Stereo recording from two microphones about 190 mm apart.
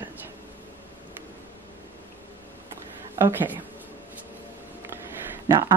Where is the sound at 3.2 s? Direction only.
10° right (ahead or behind).